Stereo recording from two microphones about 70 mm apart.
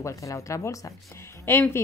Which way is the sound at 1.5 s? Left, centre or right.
Left.